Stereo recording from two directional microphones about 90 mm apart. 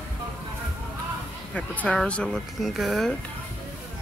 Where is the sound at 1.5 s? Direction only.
15° left (ahead or behind); by 3.1 s centre (ahead or behind).